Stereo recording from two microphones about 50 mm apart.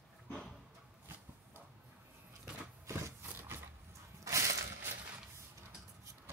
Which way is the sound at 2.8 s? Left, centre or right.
Right.